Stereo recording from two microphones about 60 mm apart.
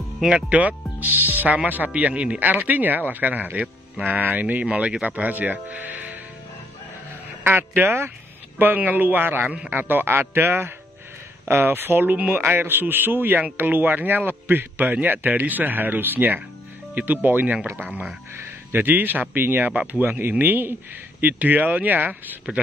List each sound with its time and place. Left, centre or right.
0.2 s speech: centre
7.4 s a man's voice: right
18.3 s a man's voice: right